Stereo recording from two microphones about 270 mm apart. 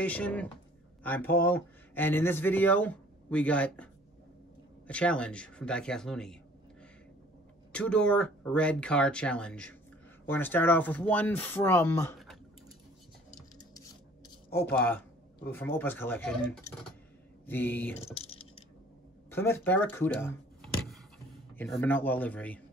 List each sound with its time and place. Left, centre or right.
0.0 s speech: centre
7.7 s speech: centre
14.5 s speech: centre
18.0 s typing: left
19.3 s speech: centre